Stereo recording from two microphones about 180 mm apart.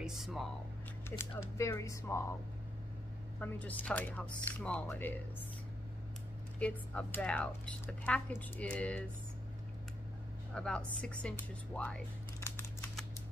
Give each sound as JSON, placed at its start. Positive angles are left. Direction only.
{"t": 0.0, "sound": "speech", "side_deg": 0}
{"t": 1.1, "sound": "a sound", "side_deg": 15}
{"t": 1.6, "sound": "speech", "side_deg": 15}
{"t": 3.3, "sound": "speech", "side_deg": 10}
{"t": 6.6, "sound": "speech", "side_deg": 5}
{"t": 10.5, "sound": "speech", "side_deg": 5}